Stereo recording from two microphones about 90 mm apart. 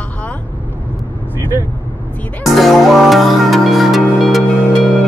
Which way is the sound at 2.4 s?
Centre (ahead or behind).